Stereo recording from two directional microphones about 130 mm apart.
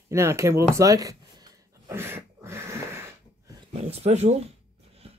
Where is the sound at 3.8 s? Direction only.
55° right (ahead or behind).